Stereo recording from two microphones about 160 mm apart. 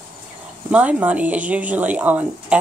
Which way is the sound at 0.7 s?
10° right (ahead or behind).